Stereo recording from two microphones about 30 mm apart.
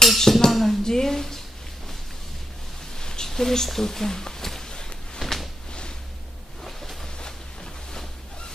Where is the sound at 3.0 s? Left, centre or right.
Left.